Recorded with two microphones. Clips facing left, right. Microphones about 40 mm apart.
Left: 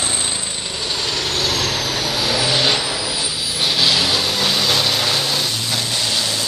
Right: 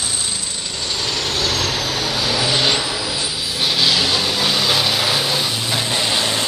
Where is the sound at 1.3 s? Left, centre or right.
Centre.